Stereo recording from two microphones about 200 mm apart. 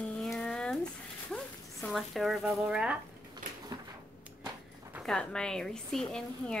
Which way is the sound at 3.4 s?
45° right (ahead or behind).